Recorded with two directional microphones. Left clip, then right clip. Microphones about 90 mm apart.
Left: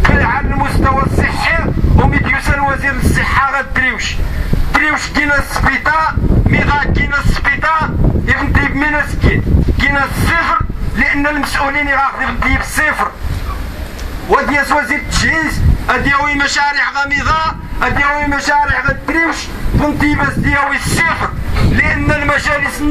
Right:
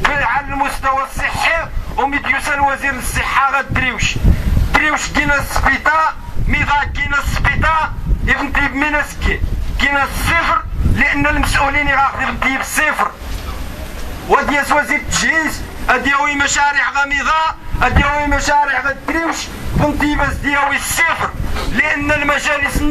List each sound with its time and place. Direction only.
0.0 s a sound: 5° right (ahead or behind)
4.7 s a man's voice: 5° right (ahead or behind)
14.3 s a man's voice: 5° right (ahead or behind)